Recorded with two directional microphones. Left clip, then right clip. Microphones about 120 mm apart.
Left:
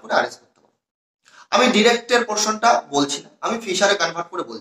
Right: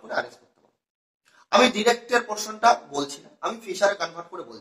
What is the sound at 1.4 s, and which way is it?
Speech, 35° left (ahead or behind).